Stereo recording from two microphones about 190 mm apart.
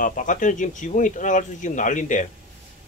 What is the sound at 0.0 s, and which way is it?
Speech, 45° left (ahead or behind).